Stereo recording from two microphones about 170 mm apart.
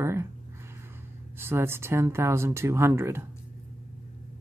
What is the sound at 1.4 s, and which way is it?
Speech, 15° right (ahead or behind).